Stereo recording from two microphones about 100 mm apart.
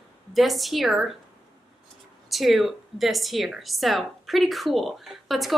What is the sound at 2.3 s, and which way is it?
A woman's voice, centre (ahead or behind).